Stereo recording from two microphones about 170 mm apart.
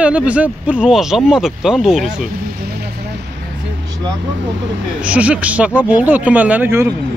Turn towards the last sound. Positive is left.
turn(degrees=-15)  # may be behind; listen again after turning